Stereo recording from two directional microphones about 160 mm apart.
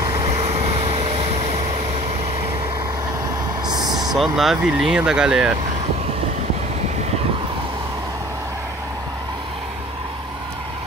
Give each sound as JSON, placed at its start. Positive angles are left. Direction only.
{"t": 0.0, "sound": "vehicle", "side_deg": -35}
{"t": 3.6, "sound": "vehicle", "side_deg": -25}
{"t": 4.2, "sound": "speech", "side_deg": 0}